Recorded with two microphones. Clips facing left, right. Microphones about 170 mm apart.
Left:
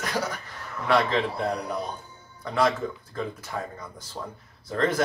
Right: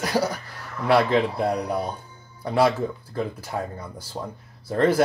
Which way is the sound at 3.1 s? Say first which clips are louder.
Right 4 dB; 35° right (ahead or behind).